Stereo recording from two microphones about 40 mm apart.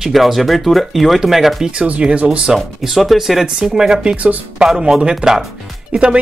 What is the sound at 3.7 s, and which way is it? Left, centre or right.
Speech, centre.